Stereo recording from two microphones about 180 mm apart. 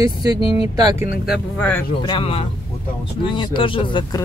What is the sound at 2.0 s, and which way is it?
Speech, 30° left (ahead or behind).